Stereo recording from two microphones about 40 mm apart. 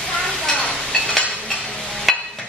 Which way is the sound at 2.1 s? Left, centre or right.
Centre.